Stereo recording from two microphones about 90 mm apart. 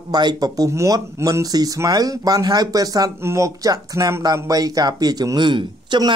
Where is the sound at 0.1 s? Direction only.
50° right (ahead or behind).